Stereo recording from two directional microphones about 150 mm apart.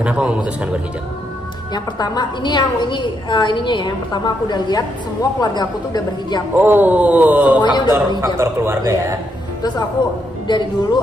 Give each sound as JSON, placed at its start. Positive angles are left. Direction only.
{"t": 0.0, "sound": "speech", "side_deg": -5}
{"t": 1.7, "sound": "a woman's voice", "side_deg": 30}
{"t": 6.5, "sound": "speech", "side_deg": -15}
{"t": 7.6, "sound": "a woman's voice", "side_deg": 30}
{"t": 8.2, "sound": "speech", "side_deg": -15}
{"t": 9.6, "sound": "a woman's voice", "side_deg": 25}